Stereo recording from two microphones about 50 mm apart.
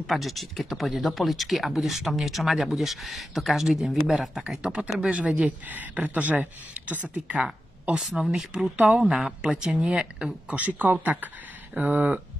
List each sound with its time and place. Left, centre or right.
0.0 s speech: centre; by 5.4 s right
5.7 s speech: right; by 8.0 s centre
8.0 s speech: centre
8.7 s speech: right
9.0 s speech: centre
10.5 s speech: right